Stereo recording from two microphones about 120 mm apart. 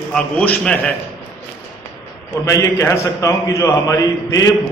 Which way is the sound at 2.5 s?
25° left (ahead or behind).